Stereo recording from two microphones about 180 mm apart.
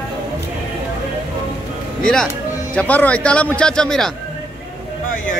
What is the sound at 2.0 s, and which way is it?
Speech, 5° left (ahead or behind).